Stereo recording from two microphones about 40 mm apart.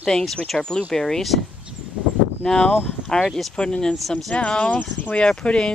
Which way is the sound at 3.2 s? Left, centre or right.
Centre.